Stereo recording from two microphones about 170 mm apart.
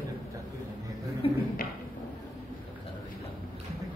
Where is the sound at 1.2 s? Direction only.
35° left (ahead or behind).